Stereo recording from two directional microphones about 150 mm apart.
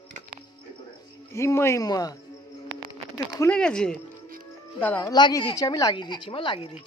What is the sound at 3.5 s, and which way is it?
A child's voice, 5° left (ahead or behind).